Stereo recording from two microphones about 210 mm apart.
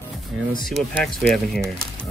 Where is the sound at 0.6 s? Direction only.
Centre (ahead or behind).